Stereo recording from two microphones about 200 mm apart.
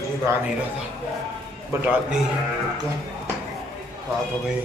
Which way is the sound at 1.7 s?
10° right (ahead or behind).